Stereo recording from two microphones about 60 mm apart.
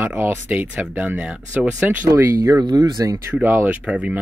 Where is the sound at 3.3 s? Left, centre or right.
Right.